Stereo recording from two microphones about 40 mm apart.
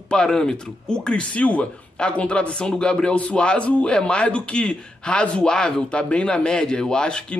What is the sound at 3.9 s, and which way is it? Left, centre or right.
Speech, left.